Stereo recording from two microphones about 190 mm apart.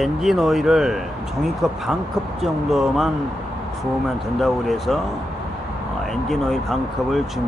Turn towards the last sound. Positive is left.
turn(degrees=0)  # may be behind; listen again after turning